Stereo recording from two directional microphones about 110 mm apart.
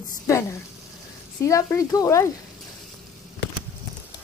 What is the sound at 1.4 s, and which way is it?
Speech, 30° left (ahead or behind).